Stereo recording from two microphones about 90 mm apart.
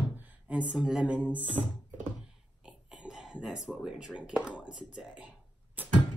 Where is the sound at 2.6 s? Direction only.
10° right (ahead or behind).